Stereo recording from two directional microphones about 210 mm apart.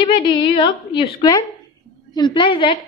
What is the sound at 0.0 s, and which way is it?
A woman's voice, 20° left (ahead or behind).